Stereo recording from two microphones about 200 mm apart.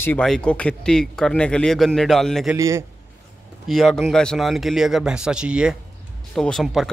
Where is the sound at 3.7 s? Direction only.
Centre (ahead or behind).